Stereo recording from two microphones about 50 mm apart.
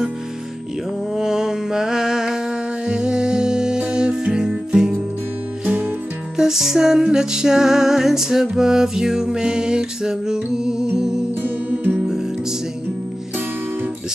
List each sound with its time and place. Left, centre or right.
1.1 s music: centre
6.3 s music: centre
11.8 s music: right